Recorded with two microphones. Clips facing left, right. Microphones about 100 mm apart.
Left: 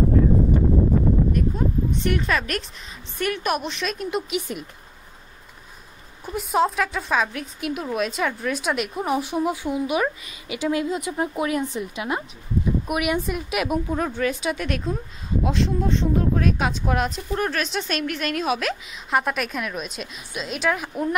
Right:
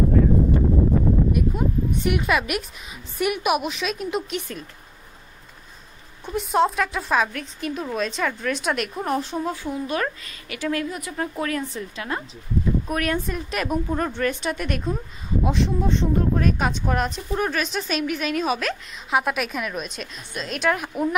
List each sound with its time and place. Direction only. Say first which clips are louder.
1.3 s a sound: even; 10° right (ahead or behind)
3.2 s speech: right 2 dB; 15° right (ahead or behind)
4.4 s a woman's voice: left 3 dB; 15° left (ahead or behind)
6.2 s a woman's voice: right 1 dB; centre (ahead or behind)